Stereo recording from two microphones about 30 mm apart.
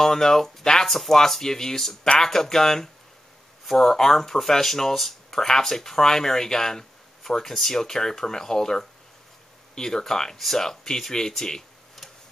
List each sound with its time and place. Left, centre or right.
0.0 s speech: centre
0.8 s speech: centre
1.1 s speech: centre